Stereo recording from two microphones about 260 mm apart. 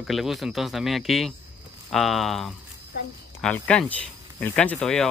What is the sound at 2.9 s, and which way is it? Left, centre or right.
Speech, left.